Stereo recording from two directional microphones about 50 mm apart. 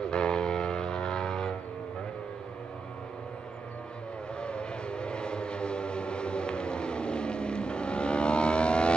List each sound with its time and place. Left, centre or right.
0.0 s vehicle: centre
4.4 s vehicle: centre